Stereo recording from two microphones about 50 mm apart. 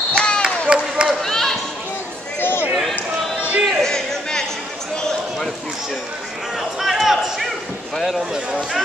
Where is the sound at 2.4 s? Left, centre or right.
Left.